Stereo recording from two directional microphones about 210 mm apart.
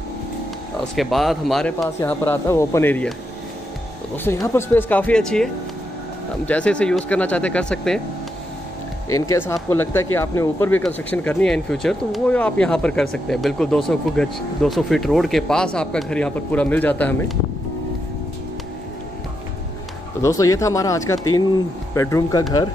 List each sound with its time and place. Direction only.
0.9 s speech: centre (ahead or behind)
4.2 s speech: 10° left (ahead or behind)
9.5 s speech: 10° left (ahead or behind)
20.2 s speech: 15° left (ahead or behind)